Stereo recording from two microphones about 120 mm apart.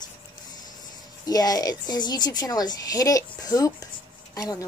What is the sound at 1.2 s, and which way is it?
A woman's voice, 30° left (ahead or behind).